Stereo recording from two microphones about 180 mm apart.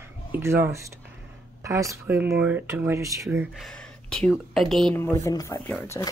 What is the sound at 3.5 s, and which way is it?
Speech, centre (ahead or behind).